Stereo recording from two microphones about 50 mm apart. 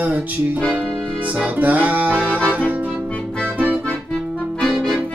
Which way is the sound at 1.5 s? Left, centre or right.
Right.